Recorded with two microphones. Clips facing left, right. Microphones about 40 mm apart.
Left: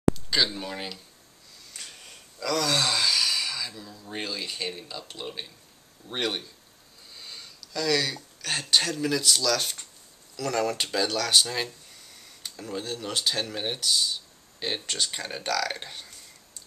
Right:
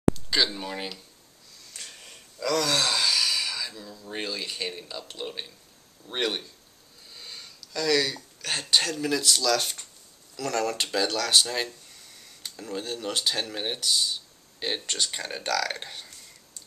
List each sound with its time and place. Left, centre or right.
0.1 s speech: centre
1.7 s a sound: centre
2.4 s speech: centre